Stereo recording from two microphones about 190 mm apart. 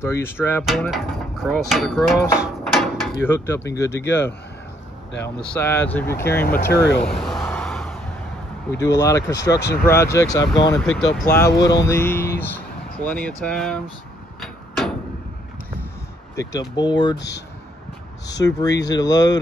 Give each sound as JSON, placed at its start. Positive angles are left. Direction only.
{"t": 0.0, "sound": "speech", "side_deg": 10}
{"t": 0.7, "sound": "speech", "side_deg": 0}
{"t": 3.2, "sound": "speech", "side_deg": 10}
{"t": 7.1, "sound": "speech", "side_deg": 0}
{"t": 7.4, "sound": "a sound", "side_deg": 5}
{"t": 8.7, "sound": "speech", "side_deg": 15}
{"t": 9.6, "sound": "speech", "side_deg": 60}
{"t": 9.8, "sound": "speech", "side_deg": 15}
{"t": 14.4, "sound": "a sound", "side_deg": 0}
{"t": 16.3, "sound": "speech", "side_deg": 20}
{"t": 18.4, "sound": "speech", "side_deg": 20}